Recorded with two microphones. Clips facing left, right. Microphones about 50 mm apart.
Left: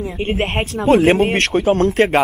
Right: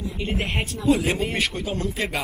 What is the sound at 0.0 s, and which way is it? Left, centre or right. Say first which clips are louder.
Speech: left 7 dB; left.